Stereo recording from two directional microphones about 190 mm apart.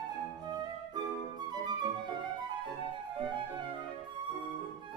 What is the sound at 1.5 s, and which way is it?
Flute, 20° right (ahead or behind).